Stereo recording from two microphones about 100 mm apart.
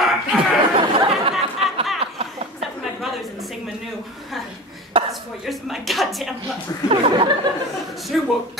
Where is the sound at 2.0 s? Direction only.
80° right.